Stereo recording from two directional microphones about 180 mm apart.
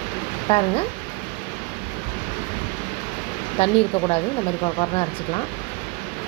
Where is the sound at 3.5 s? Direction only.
35° left (ahead or behind).